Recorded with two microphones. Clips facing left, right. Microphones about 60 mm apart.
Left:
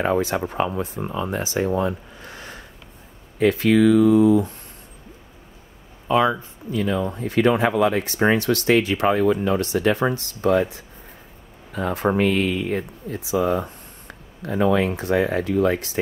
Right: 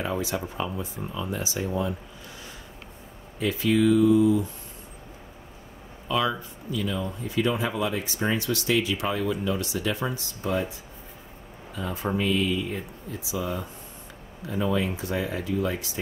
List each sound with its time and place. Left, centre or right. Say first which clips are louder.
0.0 s speech: left 8 dB; left
6.0 s speech: left 7 dB; left
6.7 s speech: left 6 dB; left